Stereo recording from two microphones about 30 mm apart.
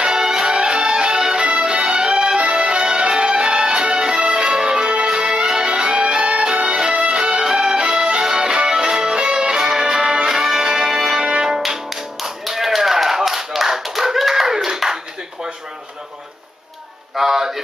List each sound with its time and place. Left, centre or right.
0.0 s music: right
9.1 s music: right
9.6 s music: centre
11.1 s music: right
11.9 s music: centre
13.6 s clapping: centre
17.1 s a sound: centre